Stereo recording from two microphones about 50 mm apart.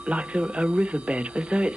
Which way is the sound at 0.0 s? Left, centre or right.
Right.